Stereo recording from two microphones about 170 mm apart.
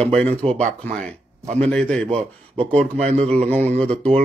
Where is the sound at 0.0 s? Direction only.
5° left (ahead or behind).